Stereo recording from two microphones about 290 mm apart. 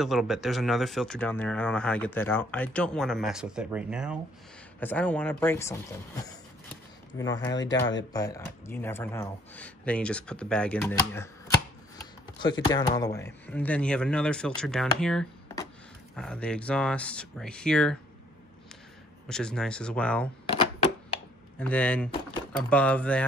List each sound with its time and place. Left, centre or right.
0.0 s speech: centre
12.4 s speech: centre
19.2 s speech: centre
20.5 s a sound: left
21.5 s speech: centre